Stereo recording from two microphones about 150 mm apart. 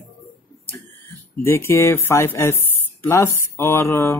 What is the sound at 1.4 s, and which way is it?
Speech, 15° left (ahead or behind).